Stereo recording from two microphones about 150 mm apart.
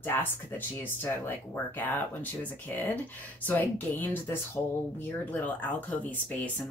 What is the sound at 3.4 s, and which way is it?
Speech, 10° left (ahead or behind).